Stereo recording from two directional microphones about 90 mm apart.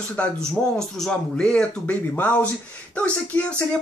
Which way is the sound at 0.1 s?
10° left (ahead or behind).